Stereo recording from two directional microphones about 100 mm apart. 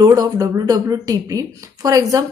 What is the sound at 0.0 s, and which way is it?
A woman's voice, 40° right (ahead or behind).